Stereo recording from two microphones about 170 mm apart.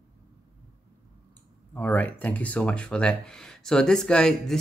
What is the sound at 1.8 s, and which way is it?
Speech, 10° left (ahead or behind).